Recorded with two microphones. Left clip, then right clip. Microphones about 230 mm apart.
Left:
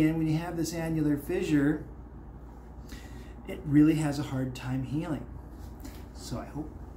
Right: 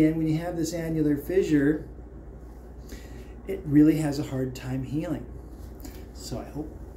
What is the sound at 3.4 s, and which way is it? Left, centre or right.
Speech, centre.